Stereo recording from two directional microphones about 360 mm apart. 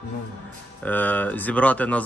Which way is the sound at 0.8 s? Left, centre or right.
Centre.